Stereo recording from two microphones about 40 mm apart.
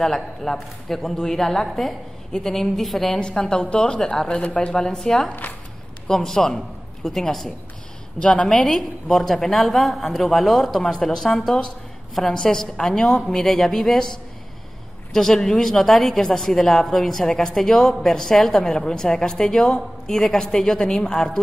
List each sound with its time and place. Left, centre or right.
0.4 s a woman's voice: centre
3.2 s a woman's voice: left; by 7.5 s centre
8.2 s a woman's voice: left
8.6 s a woman's voice: centre
15.1 s a woman's voice: centre